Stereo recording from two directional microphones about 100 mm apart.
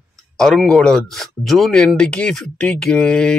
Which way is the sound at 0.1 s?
5° left (ahead or behind).